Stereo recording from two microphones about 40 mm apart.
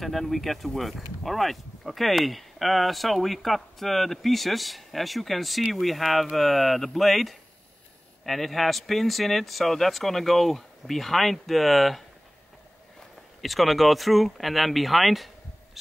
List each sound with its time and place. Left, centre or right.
0.0 s speech: centre
13.4 s speech: centre